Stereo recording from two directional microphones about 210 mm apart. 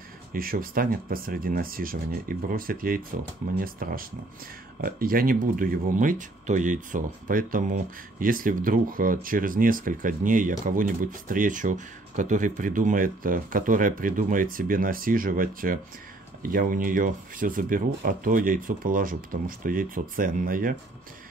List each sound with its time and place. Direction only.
0.3 s speech: 45° right (ahead or behind)